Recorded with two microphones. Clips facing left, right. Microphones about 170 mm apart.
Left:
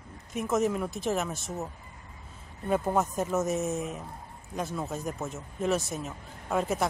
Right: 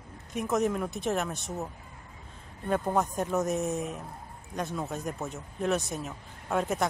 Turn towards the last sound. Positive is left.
turn(degrees=0)  # may be behind; listen again after turning